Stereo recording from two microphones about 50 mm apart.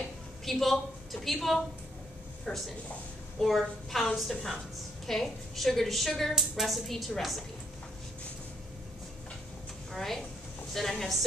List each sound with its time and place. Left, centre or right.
0.5 s a woman's voice: centre
2.5 s speech: centre
3.4 s a woman's voice: centre
9.9 s a woman's voice: centre